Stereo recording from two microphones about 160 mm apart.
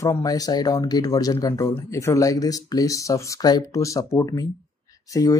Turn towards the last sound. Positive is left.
turn(degrees=20)  # may be behind; listen again after turning